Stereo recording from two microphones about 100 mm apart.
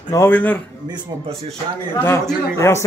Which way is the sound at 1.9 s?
20° left (ahead or behind).